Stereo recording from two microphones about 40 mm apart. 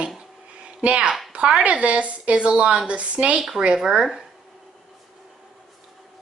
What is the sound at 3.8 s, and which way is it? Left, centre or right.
Speech, centre.